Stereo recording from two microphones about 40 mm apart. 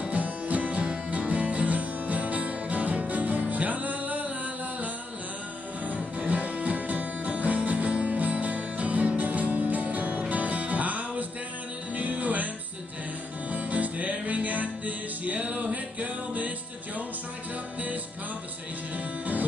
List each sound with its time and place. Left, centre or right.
0.1 s music: right
6.1 s music: right
13.5 s music: right